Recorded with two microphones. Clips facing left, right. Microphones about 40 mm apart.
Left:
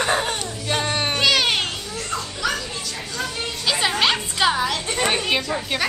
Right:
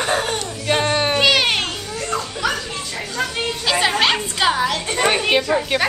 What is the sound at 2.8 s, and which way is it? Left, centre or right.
Music, right.